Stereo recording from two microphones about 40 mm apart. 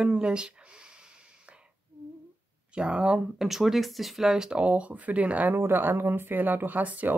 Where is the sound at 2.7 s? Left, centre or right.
Right.